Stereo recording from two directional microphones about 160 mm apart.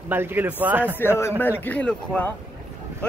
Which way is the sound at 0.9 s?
15° left (ahead or behind).